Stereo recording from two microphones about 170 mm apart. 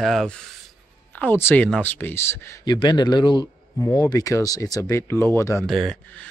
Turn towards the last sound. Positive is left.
turn(degrees=0)  # may be behind; listen again after turning